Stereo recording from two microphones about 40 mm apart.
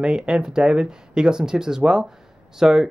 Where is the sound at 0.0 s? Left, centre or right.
Right.